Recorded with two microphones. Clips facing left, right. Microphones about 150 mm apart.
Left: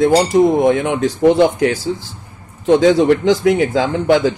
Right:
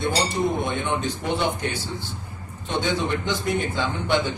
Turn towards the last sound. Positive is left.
turn(degrees=90)